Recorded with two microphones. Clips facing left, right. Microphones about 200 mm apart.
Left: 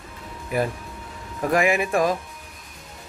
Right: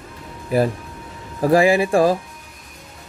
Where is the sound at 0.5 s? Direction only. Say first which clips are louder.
Right 6 dB; 35° right (ahead or behind).